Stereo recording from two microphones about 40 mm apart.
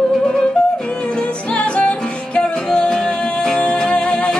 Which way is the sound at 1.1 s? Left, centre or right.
Left.